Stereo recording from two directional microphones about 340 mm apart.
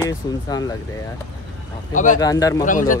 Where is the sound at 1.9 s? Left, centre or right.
Left.